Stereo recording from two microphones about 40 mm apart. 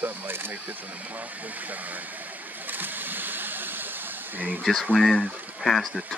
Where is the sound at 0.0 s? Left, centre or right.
Right.